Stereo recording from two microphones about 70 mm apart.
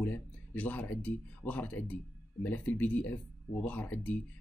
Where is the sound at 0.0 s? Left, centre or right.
Left.